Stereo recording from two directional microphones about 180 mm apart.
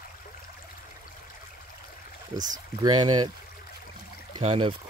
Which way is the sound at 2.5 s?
25° right (ahead or behind).